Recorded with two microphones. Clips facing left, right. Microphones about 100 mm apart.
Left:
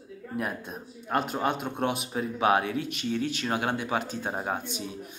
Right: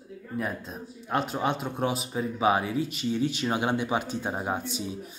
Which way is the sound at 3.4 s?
15° right (ahead or behind).